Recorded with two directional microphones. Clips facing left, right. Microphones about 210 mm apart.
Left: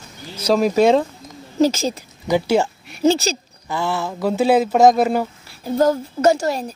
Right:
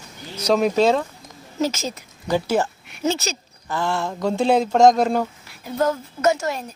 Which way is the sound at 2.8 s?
35° left (ahead or behind).